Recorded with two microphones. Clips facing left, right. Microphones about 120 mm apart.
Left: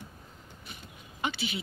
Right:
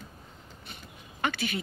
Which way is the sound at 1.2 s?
45° right (ahead or behind).